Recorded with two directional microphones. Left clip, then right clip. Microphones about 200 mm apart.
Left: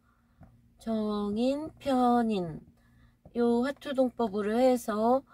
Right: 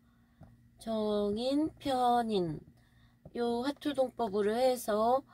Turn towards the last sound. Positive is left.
turn(degrees=-20)  # may be behind; listen again after turning